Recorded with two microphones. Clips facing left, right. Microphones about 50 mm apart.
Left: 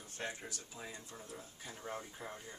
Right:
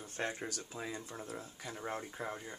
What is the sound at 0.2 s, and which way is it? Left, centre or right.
Speech, right.